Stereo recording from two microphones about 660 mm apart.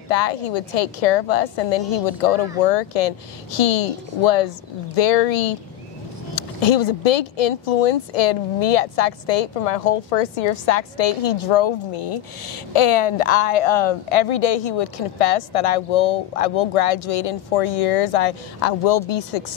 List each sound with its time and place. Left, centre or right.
0.1 s speech: left